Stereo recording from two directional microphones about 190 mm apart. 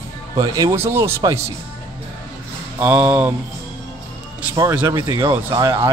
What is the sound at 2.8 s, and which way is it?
Speech, 15° right (ahead or behind).